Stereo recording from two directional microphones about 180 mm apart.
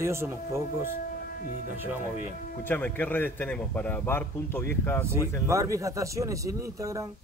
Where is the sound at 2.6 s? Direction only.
10° left (ahead or behind).